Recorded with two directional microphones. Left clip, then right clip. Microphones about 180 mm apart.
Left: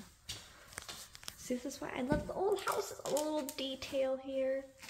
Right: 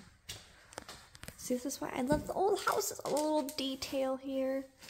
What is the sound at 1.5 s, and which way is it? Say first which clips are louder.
Speech: right 3 dB; 25° right (ahead or behind).